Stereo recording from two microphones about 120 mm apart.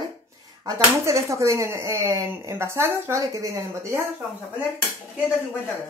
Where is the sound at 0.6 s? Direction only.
30° right (ahead or behind).